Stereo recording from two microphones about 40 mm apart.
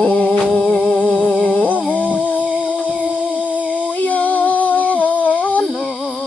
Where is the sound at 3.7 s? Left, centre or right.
Left.